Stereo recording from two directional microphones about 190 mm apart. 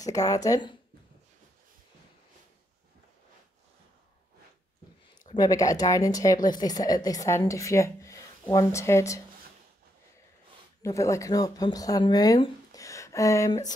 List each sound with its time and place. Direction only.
0.0 s speech: 15° left (ahead or behind)
5.3 s speech: 20° left (ahead or behind)
10.8 s speech: 15° left (ahead or behind)